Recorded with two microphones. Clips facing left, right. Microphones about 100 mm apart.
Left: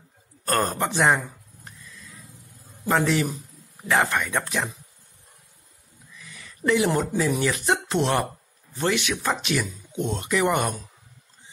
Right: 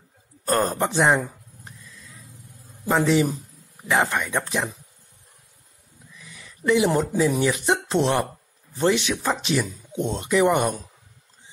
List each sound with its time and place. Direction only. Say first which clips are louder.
0.5 s speech: right 2 dB; 10° right (ahead or behind)
2.9 s speech: right 3 dB; 10° right (ahead or behind)
6.2 s speech: right 2 dB; 10° right (ahead or behind)
8.7 s speech: right 3 dB; 25° right (ahead or behind)